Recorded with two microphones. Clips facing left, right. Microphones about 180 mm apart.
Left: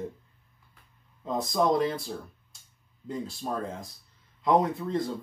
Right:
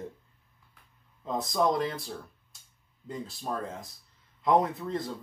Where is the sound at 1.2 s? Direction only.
Centre (ahead or behind).